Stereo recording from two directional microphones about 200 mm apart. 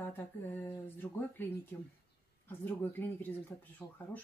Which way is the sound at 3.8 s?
20° left (ahead or behind).